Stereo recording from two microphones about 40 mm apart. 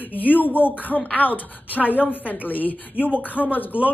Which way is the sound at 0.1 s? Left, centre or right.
Left.